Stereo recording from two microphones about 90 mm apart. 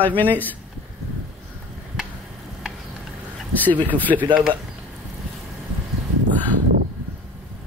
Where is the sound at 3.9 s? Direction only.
20° left (ahead or behind).